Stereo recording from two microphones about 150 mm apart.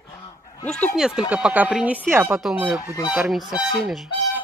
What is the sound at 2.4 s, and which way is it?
Speech, 5° right (ahead or behind).